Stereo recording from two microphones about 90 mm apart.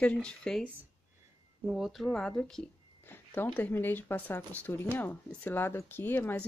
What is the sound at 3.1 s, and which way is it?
Speech, 20° left (ahead or behind).